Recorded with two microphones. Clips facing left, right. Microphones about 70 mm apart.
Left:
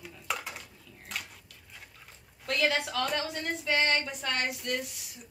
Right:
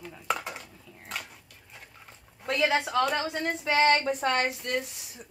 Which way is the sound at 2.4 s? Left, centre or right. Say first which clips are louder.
Right 3 dB; centre.